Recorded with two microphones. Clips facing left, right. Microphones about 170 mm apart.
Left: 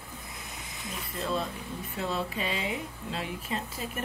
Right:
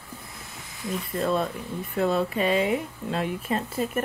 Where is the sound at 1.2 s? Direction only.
55° right (ahead or behind).